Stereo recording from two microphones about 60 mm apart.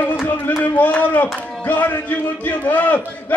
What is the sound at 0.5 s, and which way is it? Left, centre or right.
A man's voice, left.